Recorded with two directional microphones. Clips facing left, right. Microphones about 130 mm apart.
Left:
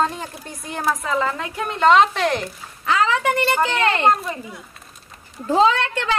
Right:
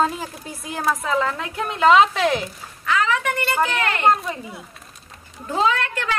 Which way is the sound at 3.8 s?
30° left (ahead or behind).